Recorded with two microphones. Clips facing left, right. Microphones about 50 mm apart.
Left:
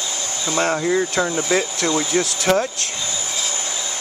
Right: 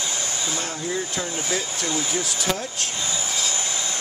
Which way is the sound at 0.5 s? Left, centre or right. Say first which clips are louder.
Left 13 dB; left.